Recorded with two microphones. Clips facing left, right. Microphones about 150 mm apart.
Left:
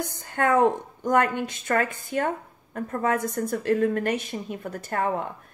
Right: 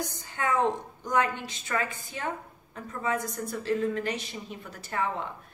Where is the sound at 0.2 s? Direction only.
55° left (ahead or behind).